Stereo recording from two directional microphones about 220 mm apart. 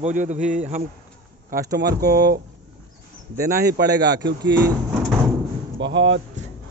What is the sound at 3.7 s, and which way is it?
Speech, 50° right (ahead or behind).